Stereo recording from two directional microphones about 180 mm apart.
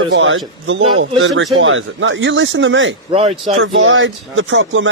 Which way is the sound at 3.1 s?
35° right (ahead or behind).